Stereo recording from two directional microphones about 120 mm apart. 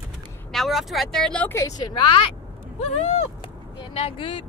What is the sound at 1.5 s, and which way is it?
Speech, 25° left (ahead or behind).